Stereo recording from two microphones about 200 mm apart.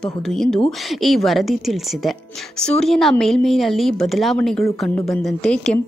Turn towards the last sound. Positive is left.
turn(degrees=5)  # may be behind; listen again after turning